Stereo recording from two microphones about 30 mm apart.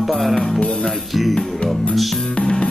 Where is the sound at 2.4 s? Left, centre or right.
Left.